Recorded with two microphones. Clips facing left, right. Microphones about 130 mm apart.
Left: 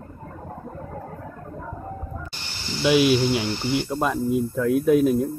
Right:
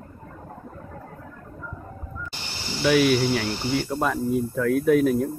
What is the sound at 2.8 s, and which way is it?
Speech, 20° left (ahead or behind).